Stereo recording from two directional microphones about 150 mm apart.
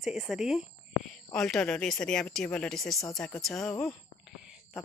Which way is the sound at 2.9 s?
20° left (ahead or behind).